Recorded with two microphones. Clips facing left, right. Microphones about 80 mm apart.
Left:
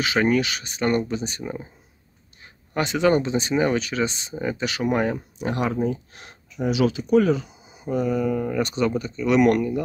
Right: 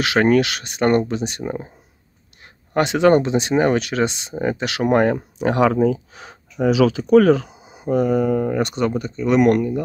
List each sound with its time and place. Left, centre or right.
0.0 s speech: right
0.8 s speech: right
1.4 s speech: right
2.8 s speech: right
4.4 s speech: right
4.6 s speech: right
7.9 s speech: right